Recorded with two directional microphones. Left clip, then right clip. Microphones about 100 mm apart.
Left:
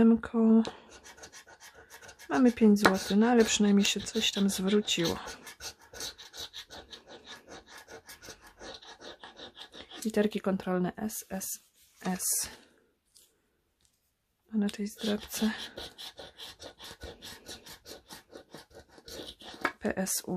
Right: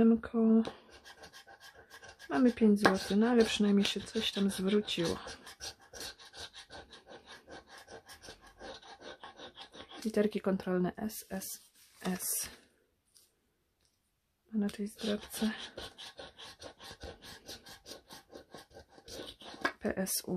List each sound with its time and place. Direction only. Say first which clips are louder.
0.0 s speech: left 3 dB; 35° left (ahead or behind)
1.9 s a sound: left 4 dB; 35° left (ahead or behind)
10.1 s speech: left 2 dB; 25° left (ahead or behind)
14.5 s whispering: left 3 dB; 30° left (ahead or behind)
17.8 s rub: left 2 dB; 35° left (ahead or behind)
19.1 s a sound: left 2 dB; 35° left (ahead or behind)
19.8 s speech: left 3 dB; 25° left (ahead or behind)